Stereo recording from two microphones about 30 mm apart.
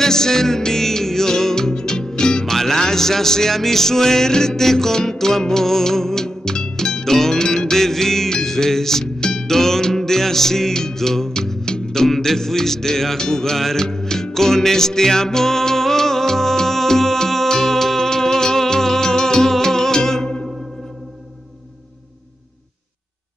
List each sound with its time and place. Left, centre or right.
0.0 s music: centre
2.4 s music: centre
9.2 s music: left
9.5 s music: centre